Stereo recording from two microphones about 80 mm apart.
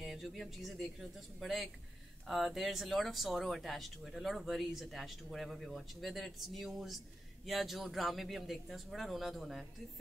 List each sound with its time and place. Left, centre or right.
0.0 s speech: centre